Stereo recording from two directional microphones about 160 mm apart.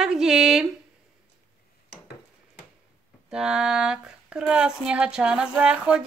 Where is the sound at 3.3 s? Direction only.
5° right (ahead or behind).